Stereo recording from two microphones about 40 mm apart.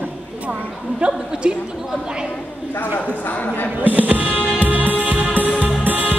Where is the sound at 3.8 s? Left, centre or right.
Right.